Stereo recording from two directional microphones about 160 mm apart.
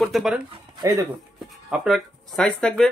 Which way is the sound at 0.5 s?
25° right (ahead or behind).